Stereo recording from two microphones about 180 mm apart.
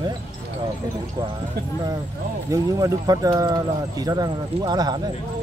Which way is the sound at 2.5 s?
20° right (ahead or behind).